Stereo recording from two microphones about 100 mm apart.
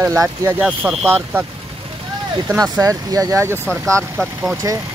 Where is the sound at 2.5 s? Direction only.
35° right (ahead or behind).